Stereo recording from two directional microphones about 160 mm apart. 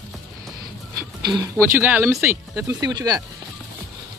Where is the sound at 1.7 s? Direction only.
10° right (ahead or behind).